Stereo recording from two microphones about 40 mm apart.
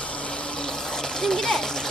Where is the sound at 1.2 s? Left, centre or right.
Centre.